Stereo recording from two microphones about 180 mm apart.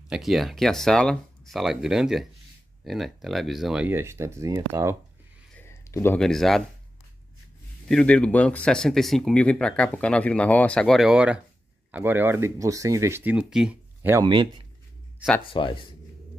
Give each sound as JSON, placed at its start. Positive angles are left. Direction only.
{"t": 0.1, "sound": "speech", "side_deg": 0}
{"t": 5.5, "sound": "a sound", "side_deg": 15}
{"t": 6.1, "sound": "speech", "side_deg": 0}
{"t": 7.9, "sound": "speech", "side_deg": 5}
{"t": 14.2, "sound": "a man's voice", "side_deg": -25}
{"t": 15.4, "sound": "speech", "side_deg": 30}